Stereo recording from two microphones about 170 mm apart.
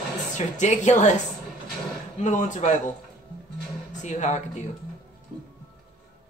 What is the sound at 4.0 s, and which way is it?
Speech, 45° left (ahead or behind).